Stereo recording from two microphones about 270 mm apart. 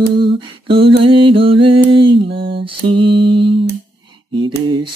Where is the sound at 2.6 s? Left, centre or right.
Centre.